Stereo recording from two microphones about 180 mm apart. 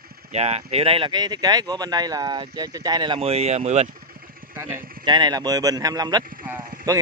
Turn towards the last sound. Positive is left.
turn(degrees=-20)  # may be behind; listen again after turning